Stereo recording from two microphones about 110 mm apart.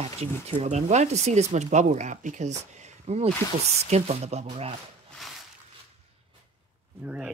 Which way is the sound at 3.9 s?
75° right (ahead or behind).